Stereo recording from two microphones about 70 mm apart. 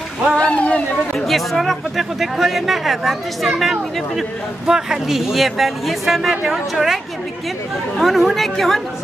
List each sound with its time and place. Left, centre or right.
0.4 s speech: centre
1.1 s speech: centre
8.0 s speech: centre